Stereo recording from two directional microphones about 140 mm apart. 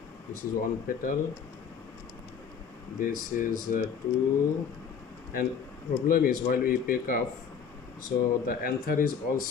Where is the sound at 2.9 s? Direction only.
80° left.